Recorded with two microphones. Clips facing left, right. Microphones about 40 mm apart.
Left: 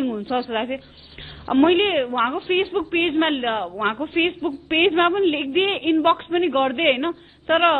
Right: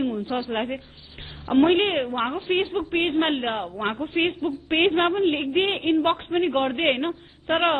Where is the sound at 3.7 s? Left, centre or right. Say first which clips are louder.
Left 4 dB; left.